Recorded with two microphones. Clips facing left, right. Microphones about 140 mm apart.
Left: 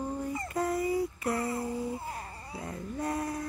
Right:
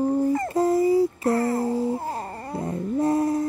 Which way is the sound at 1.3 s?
75° right (ahead or behind).